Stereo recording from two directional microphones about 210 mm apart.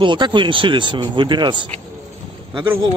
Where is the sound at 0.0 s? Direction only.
20° right (ahead or behind).